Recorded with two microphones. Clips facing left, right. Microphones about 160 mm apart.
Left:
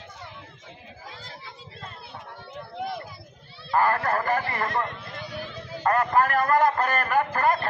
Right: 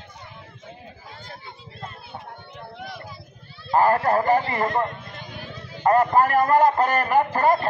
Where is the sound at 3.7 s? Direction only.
30° right (ahead or behind).